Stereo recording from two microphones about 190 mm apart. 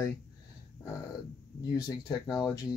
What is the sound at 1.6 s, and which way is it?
Speech, 20° left (ahead or behind).